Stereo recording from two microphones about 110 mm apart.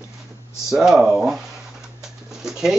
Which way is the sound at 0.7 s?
5° right (ahead or behind).